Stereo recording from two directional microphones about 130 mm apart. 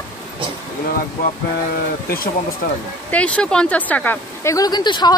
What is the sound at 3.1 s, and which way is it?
Speech, 10° left (ahead or behind).